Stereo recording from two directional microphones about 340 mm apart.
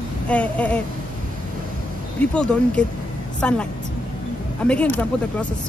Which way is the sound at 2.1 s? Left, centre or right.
Centre.